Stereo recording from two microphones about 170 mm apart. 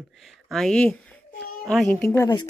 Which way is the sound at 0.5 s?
5° left (ahead or behind).